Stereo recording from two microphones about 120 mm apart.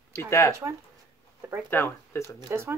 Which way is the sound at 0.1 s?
20° left (ahead or behind).